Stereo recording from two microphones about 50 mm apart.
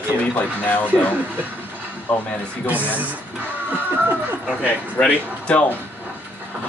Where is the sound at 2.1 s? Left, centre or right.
Left.